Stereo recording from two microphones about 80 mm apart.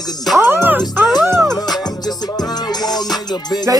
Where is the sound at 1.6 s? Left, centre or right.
Left.